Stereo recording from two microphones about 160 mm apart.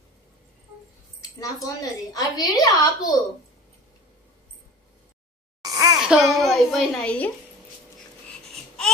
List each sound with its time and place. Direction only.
1.4 s a woman's voice: 20° left (ahead or behind)
5.6 s a sound: 20° right (ahead or behind)
5.9 s a child's voice: 5° right (ahead or behind)